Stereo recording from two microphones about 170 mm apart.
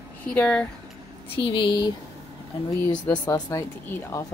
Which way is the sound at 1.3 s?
30° left (ahead or behind).